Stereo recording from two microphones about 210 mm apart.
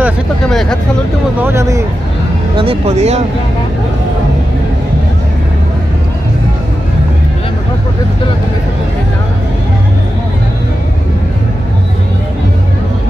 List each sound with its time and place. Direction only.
0.0 s speech: centre (ahead or behind)
1.4 s speech: 15° right (ahead or behind)
2.5 s speech: 25° right (ahead or behind)